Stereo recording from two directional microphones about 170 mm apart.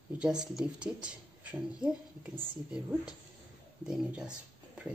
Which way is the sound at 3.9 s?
5° right (ahead or behind).